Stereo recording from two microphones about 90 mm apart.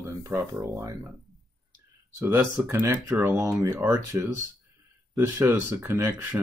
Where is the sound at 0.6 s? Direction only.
35° right (ahead or behind).